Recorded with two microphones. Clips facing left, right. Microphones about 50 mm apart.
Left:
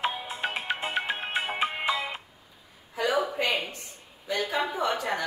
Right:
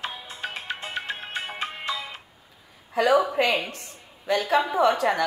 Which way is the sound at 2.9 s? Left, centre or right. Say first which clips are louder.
Right 7 dB; right.